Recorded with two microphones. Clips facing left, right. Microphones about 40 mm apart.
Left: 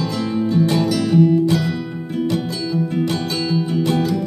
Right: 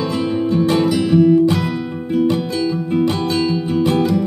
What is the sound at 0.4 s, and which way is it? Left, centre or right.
Music, right.